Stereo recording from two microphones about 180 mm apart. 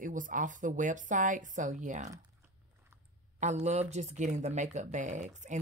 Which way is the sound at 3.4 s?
40° right (ahead or behind).